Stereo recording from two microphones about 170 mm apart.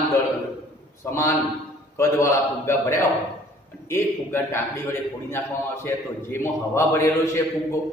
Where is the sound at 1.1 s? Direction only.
20° left (ahead or behind).